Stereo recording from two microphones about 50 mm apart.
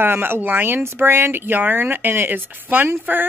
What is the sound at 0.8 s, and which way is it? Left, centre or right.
A woman's voice, right.